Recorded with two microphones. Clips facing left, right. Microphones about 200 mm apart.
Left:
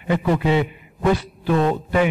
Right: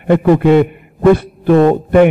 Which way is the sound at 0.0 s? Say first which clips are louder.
Right 10 dB; 60° right (ahead or behind).